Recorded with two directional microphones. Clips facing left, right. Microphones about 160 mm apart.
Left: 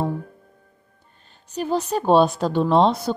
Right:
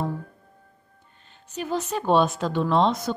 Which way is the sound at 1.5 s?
35° left (ahead or behind).